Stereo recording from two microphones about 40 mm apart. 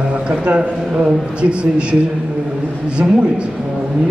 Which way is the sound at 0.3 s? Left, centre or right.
Right.